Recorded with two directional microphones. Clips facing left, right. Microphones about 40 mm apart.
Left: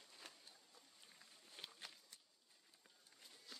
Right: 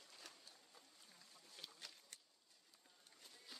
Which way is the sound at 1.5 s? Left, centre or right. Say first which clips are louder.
Left 2 dB; left.